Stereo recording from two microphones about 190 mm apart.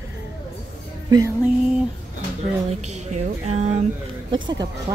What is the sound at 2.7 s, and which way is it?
Speech, 35° right (ahead or behind).